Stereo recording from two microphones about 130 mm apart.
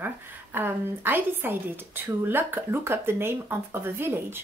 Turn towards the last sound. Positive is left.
turn(degrees=-15)  # may be behind; listen again after turning